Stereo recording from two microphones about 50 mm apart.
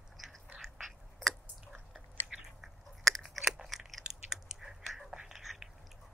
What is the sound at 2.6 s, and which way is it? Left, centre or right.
Chewing, centre.